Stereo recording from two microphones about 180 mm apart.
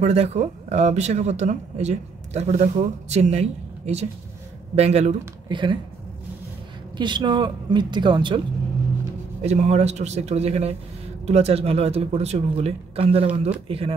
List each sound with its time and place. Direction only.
0.0 s speech: 35° right (ahead or behind)
7.0 s speech: 25° right (ahead or behind)
9.4 s speech: 40° right (ahead or behind)